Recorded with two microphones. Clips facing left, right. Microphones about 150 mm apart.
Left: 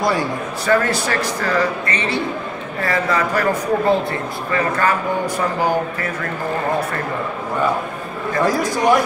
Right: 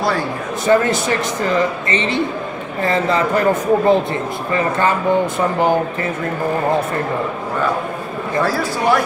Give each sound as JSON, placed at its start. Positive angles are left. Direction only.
{"t": 0.7, "sound": "speech", "side_deg": -20}
{"t": 8.5, "sound": "a man's voice", "side_deg": 15}